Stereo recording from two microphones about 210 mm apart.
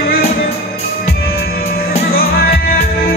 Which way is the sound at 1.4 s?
45° left (ahead or behind).